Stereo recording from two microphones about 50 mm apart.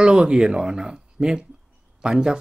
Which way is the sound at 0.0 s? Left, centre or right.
Centre.